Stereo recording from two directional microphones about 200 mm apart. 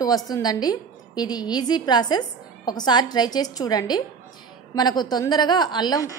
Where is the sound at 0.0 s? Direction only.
20° left (ahead or behind).